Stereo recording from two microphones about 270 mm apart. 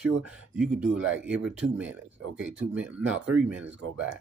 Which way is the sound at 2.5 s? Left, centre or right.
Right.